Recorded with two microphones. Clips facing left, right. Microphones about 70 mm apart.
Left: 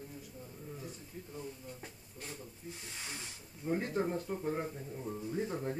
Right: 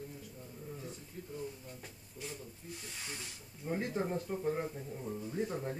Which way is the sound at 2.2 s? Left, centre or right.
Left.